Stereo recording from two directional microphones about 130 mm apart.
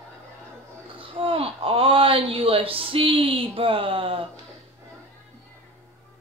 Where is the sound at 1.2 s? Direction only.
45° right (ahead or behind).